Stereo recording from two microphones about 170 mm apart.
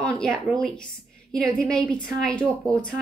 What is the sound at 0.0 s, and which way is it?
Speech, 5° left (ahead or behind).